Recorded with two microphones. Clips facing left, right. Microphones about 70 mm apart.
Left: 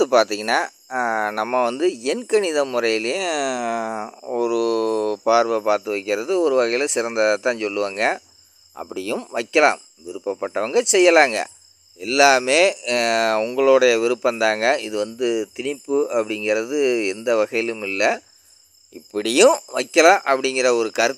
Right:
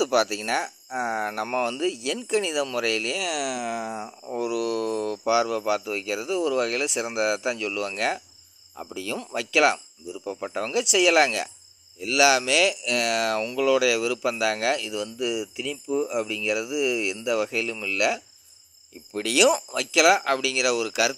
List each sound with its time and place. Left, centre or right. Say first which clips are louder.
0.0 s speech: left 6 dB; left
9.2 s speech: left 4 dB; left
19.7 s speech: left 6 dB; left